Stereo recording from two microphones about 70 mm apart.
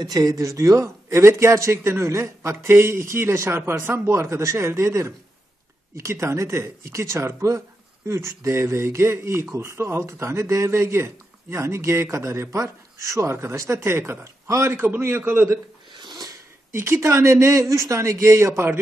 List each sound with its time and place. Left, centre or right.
0.0 s speech: right
14.7 s speech: right
15.9 s a sound: right
16.7 s speech: right